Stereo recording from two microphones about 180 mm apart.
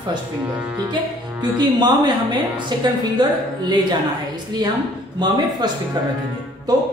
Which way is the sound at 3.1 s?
25° right (ahead or behind).